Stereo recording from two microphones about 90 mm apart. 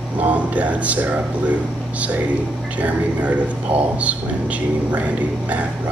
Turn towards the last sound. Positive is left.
turn(degrees=-15)  # may be behind; listen again after turning